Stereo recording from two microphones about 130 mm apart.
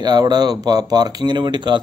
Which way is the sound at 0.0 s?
30° right (ahead or behind).